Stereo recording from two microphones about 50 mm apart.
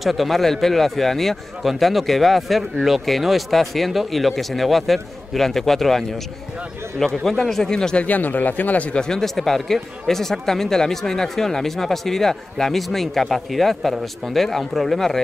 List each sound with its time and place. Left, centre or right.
0.0 s a man's voice: centre
8.0 s speech: left
9.0 s a man's voice: centre